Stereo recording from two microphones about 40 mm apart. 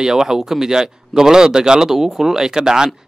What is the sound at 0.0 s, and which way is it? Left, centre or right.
Speech, centre.